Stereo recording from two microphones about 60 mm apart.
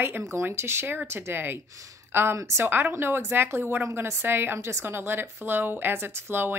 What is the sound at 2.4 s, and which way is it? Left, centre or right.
Speech, right.